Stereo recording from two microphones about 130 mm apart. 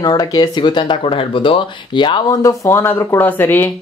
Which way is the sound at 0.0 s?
30° left (ahead or behind).